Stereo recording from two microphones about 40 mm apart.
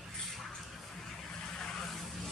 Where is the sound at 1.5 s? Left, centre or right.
Centre.